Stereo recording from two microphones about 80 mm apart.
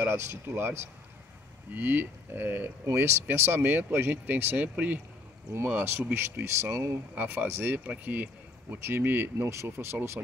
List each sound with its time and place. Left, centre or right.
0.0 s speech: right
6.4 s speech: right
7.2 s speech: right